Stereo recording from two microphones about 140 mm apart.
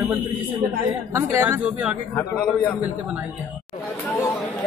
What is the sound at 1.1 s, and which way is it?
A woman's voice, 20° right (ahead or behind).